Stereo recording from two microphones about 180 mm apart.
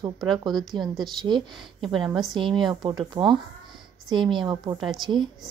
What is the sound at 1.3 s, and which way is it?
Speech, 20° right (ahead or behind).